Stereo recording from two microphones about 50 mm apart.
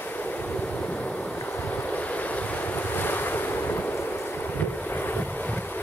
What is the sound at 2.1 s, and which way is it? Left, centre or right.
Waves, left.